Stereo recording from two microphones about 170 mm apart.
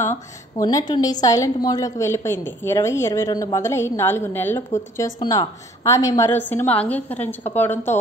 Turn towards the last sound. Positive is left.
turn(degrees=15)  # may be behind; listen again after turning